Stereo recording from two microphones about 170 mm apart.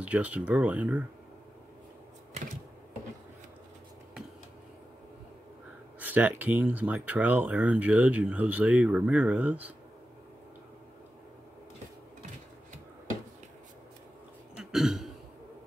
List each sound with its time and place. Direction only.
0.0 s speech: 10° right (ahead or behind)
5.9 s speech: 10° right (ahead or behind)
14.6 s throat clearing: centre (ahead or behind)